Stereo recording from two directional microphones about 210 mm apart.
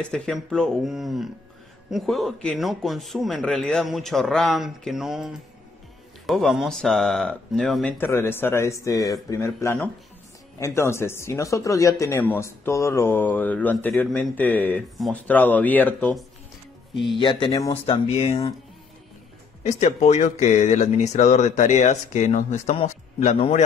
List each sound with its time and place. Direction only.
0.0 s speech: 5° left (ahead or behind)
17.2 s speech: 25° left (ahead or behind)
17.8 s speech: 30° left (ahead or behind)
19.6 s speech: 35° left (ahead or behind)